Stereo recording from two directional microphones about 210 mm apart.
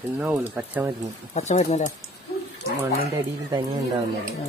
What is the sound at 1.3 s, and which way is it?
Speech, 35° left (ahead or behind).